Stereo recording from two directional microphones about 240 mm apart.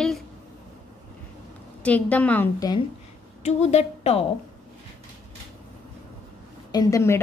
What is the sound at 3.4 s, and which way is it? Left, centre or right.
Speech, left.